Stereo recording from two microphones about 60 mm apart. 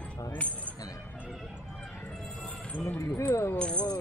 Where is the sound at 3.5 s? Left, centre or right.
Centre.